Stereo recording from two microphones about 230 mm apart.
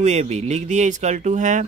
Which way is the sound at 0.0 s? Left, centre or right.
Right.